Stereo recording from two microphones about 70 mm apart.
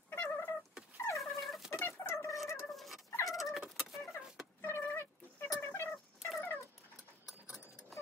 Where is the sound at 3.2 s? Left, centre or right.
Left.